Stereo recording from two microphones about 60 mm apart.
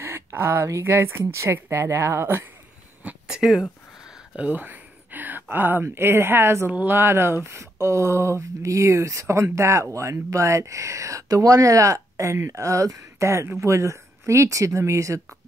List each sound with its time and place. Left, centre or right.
0.0 s a sound: right
0.8 s speech: right
1.2 s speech: right
3.3 s speech: centre
4.4 s speech: right
13.3 s speech: right